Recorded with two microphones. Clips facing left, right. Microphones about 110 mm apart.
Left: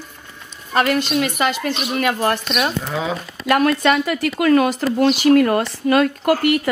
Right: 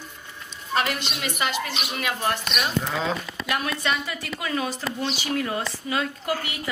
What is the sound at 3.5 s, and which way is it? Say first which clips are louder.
Speech: left 11 dB; 60° left (ahead or behind).